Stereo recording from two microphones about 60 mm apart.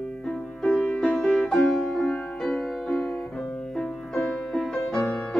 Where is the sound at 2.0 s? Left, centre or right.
Centre.